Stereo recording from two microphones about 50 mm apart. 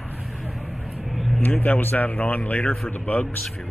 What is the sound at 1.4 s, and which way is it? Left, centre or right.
A man's voice, left.